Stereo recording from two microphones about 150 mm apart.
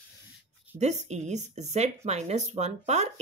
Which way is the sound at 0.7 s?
50° right (ahead or behind).